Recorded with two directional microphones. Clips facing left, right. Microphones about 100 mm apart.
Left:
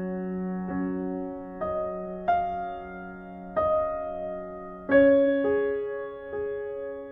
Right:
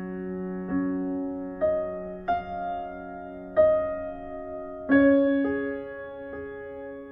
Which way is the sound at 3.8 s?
35° left (ahead or behind).